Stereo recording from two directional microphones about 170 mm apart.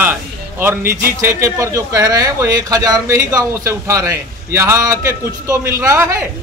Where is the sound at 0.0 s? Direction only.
10° right (ahead or behind).